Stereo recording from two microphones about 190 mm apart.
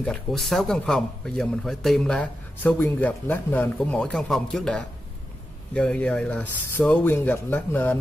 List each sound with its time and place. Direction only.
0.0 s a man's voice: centre (ahead or behind)